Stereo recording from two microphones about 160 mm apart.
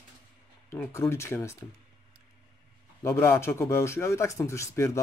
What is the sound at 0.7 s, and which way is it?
Speech, 20° left (ahead or behind).